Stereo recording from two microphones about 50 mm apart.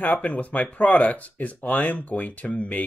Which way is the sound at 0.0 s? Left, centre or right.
Left.